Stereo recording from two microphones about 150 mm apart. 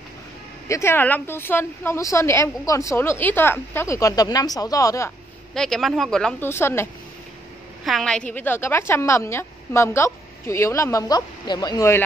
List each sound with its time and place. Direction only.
0.7 s a woman's voice: 15° left (ahead or behind)
5.5 s speech: 5° left (ahead or behind)
6.5 s speech: 15° left (ahead or behind)
7.8 s a woman's voice: 5° left (ahead or behind); by 12.0 s 20° left (ahead or behind)